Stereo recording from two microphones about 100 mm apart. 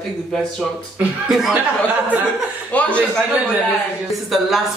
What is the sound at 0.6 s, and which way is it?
Speech, 5° right (ahead or behind).